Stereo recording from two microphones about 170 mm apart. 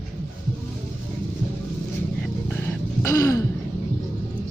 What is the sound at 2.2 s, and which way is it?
Throat clearing, 10° left (ahead or behind).